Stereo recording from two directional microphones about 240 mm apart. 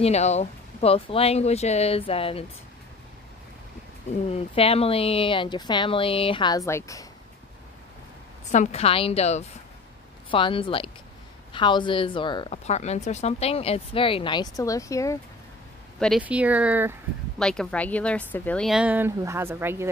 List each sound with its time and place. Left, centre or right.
0.0 s speech: left
4.3 s speech: left
8.5 s speech: left; by 15.1 s centre
16.0 s a woman's voice: centre